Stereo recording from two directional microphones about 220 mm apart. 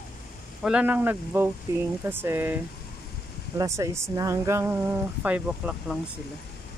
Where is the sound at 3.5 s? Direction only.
15° right (ahead or behind).